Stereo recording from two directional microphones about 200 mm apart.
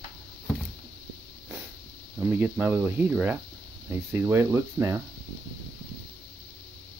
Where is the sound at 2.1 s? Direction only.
5° right (ahead or behind).